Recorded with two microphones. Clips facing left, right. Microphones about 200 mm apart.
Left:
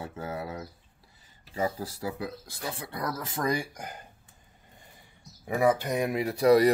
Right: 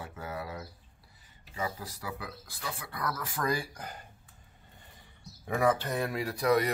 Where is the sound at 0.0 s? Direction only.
25° left (ahead or behind).